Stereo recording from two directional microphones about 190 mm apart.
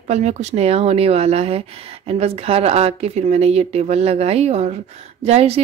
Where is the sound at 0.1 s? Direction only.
35° right (ahead or behind).